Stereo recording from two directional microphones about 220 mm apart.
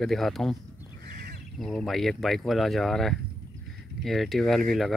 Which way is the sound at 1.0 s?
45° right (ahead or behind).